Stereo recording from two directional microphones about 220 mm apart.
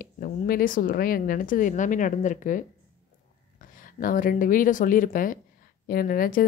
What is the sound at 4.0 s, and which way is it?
Speech, 40° left (ahead or behind).